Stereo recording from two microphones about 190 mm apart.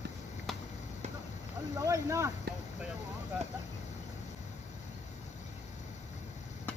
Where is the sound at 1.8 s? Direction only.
15° right (ahead or behind).